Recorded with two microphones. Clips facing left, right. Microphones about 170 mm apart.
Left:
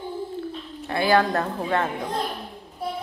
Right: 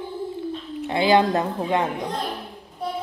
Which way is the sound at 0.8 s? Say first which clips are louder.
Right 2 dB; 20° right (ahead or behind).